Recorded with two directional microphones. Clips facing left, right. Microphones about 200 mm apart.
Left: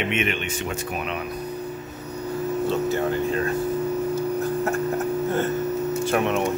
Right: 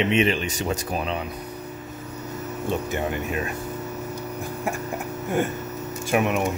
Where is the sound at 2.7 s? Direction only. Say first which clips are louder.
Left 1 dB; 15° right (ahead or behind).